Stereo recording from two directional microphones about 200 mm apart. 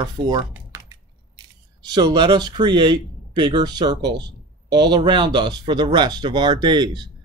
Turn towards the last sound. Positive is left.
turn(degrees=-20)  # may be behind; listen again after turning